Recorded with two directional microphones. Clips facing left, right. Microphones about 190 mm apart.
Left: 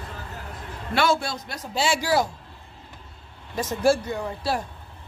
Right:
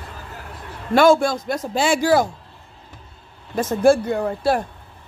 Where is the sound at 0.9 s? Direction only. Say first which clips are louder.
Right 9 dB; 50° right (ahead or behind).